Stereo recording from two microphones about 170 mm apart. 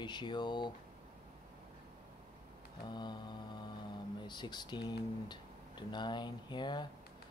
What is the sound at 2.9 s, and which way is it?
Speech, 25° left (ahead or behind).